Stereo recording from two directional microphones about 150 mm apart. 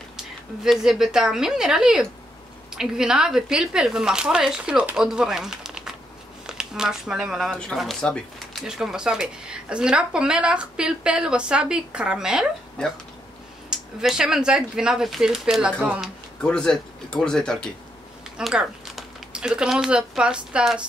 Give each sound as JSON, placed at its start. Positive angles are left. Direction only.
{"t": 0.7, "sound": "speech", "side_deg": -5}
{"t": 13.7, "sound": "speech", "side_deg": -5}
{"t": 16.3, "sound": "speech", "side_deg": 5}